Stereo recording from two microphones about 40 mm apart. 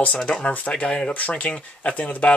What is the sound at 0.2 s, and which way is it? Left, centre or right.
Speech, left.